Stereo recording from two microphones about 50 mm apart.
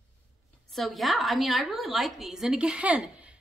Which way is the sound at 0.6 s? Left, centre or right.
Centre.